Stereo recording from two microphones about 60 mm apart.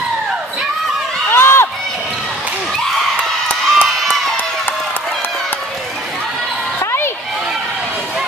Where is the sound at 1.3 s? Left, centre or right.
Left.